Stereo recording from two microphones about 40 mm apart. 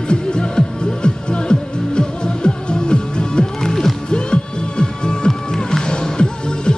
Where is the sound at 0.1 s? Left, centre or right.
Left.